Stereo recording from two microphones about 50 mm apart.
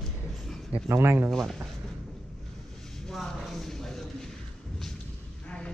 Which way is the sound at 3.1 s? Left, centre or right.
Centre.